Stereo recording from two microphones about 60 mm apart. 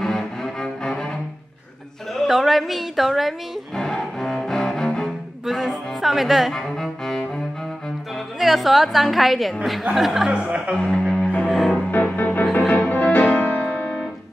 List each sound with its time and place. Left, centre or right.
0.0 s cello: centre
2.2 s a sound: centre
3.7 s cello: centre
5.4 s music: centre
6.5 s cello: centre
8.4 s a woman's voice: centre
10.3 s speech: centre
10.8 s music: centre
11.9 s music: left